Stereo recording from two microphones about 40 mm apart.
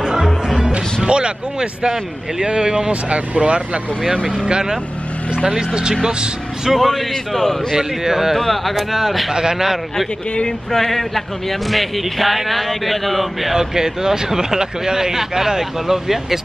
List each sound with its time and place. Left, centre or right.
0.0 s music: centre
0.6 s music: right
1.0 s speech: right
6.0 s speech: centre
6.7 s speech: centre
7.7 s speech: centre
8.4 s speech: centre
8.7 s a man's voice: centre
9.3 s speech: centre
10.7 s a man's voice: centre
13.6 s speech: centre